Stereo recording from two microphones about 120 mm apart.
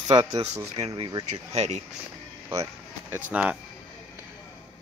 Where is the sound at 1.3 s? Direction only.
65° right (ahead or behind).